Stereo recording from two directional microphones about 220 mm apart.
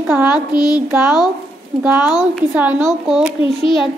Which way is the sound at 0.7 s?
10° right (ahead or behind).